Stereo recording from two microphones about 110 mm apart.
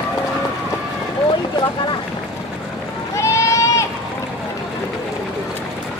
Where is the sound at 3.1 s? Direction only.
25° left (ahead or behind).